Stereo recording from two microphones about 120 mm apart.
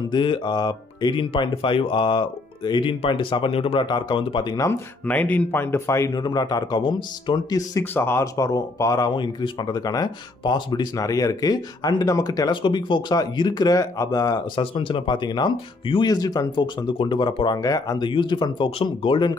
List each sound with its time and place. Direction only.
0.1 s speech: 40° left (ahead or behind)
5.0 s a man's voice: 15° left (ahead or behind); by 7.3 s 40° left (ahead or behind)
7.8 s speech: 20° left (ahead or behind)
14.6 s speech: 45° left (ahead or behind)
17.6 s speech: 30° left (ahead or behind)